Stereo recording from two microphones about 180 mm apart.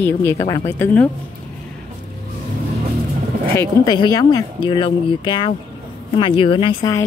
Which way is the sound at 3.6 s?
20° left (ahead or behind).